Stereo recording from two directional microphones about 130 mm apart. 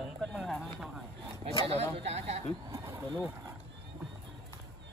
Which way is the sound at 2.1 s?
55° right (ahead or behind).